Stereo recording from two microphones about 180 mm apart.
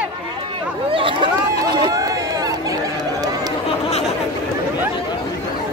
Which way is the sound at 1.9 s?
20° right (ahead or behind).